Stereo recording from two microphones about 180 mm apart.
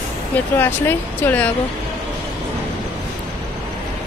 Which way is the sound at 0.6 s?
10° left (ahead or behind).